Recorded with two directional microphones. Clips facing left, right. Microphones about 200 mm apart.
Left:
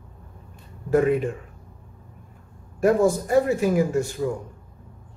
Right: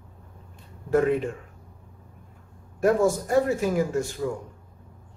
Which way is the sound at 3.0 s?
10° left (ahead or behind).